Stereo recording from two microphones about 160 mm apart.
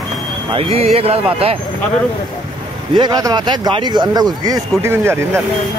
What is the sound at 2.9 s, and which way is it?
Speech, 25° right (ahead or behind).